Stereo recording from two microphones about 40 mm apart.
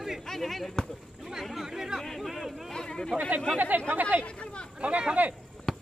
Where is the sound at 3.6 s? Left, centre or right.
Right.